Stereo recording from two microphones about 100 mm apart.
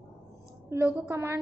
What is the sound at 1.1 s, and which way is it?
Speech, 25° right (ahead or behind).